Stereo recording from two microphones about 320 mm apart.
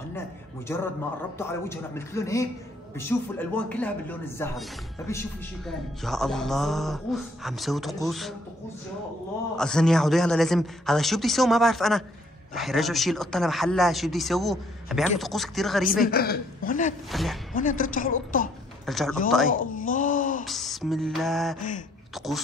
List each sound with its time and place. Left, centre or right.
0.7 s a man's voice: centre
9.6 s speech: centre
15.8 s a woman's voice: left
17.1 s speech: centre
17.6 s a woman's voice: left
18.9 s speech: centre
19.5 s wail: left
20.4 s speech: centre
21.5 s a woman's voice: left